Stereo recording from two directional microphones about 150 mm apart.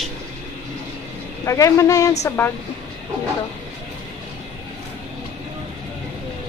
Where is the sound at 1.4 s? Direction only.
20° left (ahead or behind).